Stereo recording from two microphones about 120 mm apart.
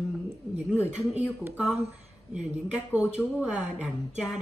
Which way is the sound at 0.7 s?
10° right (ahead or behind).